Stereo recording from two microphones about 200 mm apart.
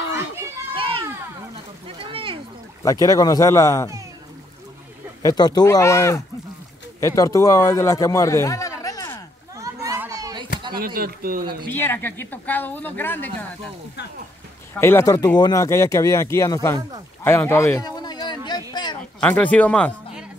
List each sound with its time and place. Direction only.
0.7 s children playing: 25° right (ahead or behind)
2.0 s a sound: 25° right (ahead or behind)
2.8 s speech: 15° left (ahead or behind)
5.2 s a man's voice: 20° left (ahead or behind)
9.6 s children playing: 15° right (ahead or behind)
10.8 s speech: 45° right (ahead or behind)
11.8 s speech: 10° left (ahead or behind)
14.7 s speech: 10° left (ahead or behind)
17.2 s a sound: 10° left (ahead or behind)
19.1 s speech: 5° left (ahead or behind)